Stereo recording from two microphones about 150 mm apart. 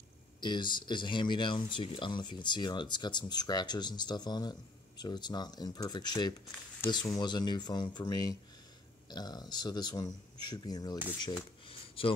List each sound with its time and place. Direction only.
0.4 s speech: 30° left (ahead or behind)